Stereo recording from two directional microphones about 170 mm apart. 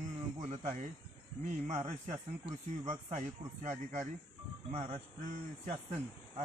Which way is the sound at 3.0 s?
45° right (ahead or behind).